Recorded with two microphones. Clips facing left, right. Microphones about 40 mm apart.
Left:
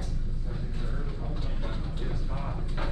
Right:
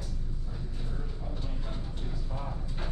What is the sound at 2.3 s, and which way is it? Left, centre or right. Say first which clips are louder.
Music: left 3 dB; left.